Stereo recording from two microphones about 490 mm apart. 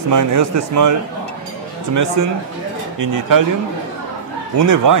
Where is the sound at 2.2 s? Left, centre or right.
Right.